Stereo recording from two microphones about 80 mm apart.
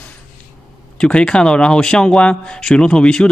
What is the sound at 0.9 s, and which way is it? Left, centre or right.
Speech, centre.